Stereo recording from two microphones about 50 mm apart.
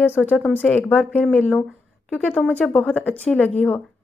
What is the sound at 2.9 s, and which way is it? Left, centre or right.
Speech, left.